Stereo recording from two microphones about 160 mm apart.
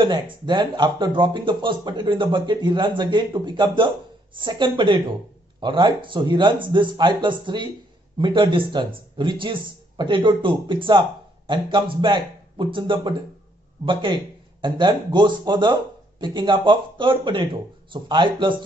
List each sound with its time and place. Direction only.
0.0 s speech: 30° right (ahead or behind)